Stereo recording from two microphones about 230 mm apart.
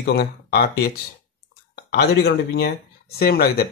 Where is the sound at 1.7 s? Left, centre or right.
Left.